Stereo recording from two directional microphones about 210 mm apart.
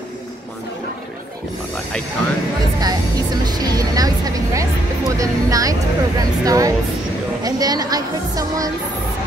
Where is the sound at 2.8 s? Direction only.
20° right (ahead or behind).